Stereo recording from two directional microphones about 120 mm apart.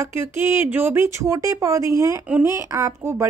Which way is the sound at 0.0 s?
20° right (ahead or behind).